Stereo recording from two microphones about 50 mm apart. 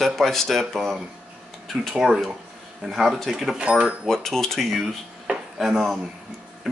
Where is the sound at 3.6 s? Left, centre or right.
Right.